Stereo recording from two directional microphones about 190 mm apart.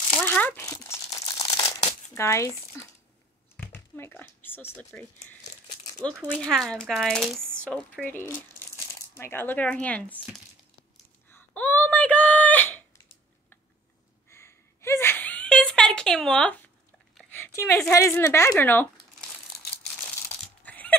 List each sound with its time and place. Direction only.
0.2 s crumpling: 10° left (ahead or behind)
1.8 s crumpling: 35° left (ahead or behind)
2.1 s speech: 15° left (ahead or behind)
3.5 s a sound: 10° left (ahead or behind)
4.9 s speech: 5° left (ahead or behind)
6.2 s speech: 5° left (ahead or behind)
11.3 s a sound: 10° left (ahead or behind)
14.3 s a sound: 15° left (ahead or behind)
17.9 s speech: 15° left (ahead or behind)
20.6 s dog: 10° left (ahead or behind)